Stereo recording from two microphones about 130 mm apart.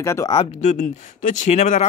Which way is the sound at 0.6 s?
70° left (ahead or behind).